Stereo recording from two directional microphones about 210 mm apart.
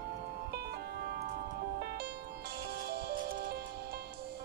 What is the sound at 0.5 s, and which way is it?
Music, 50° right (ahead or behind).